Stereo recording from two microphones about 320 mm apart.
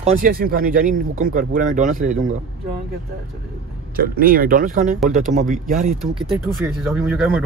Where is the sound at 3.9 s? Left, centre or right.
Right.